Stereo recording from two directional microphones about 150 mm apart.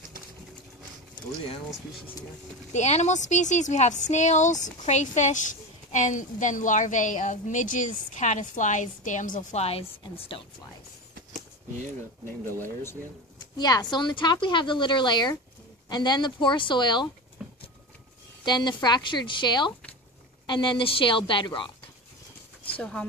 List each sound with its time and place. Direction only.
2.7 s a woman's voice: 50° left (ahead or behind)
9.6 s speech: 40° left (ahead or behind)
12.5 s speech: 15° left (ahead or behind)
13.4 s speech: 25° left (ahead or behind)
17.4 s a sound: 5° right (ahead or behind)
18.4 s speech: 30° left (ahead or behind)
22.8 s speech: 5° left (ahead or behind)